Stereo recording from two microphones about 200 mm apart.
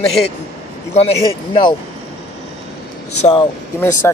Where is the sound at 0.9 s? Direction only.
30° left (ahead or behind).